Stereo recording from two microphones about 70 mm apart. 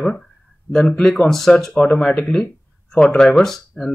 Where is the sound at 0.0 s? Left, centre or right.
Centre.